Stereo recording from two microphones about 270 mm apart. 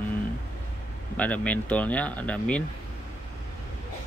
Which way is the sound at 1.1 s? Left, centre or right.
Centre.